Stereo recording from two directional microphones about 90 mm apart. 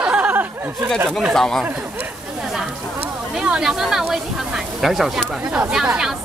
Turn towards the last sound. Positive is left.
turn(degrees=-5)  # may be behind; listen again after turning